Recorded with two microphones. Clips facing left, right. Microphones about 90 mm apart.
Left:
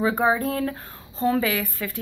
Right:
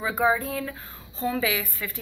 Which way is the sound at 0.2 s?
50° left (ahead or behind).